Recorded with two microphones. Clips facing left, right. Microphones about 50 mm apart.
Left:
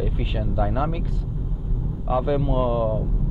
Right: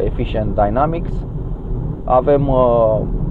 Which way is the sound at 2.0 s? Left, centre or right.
Centre.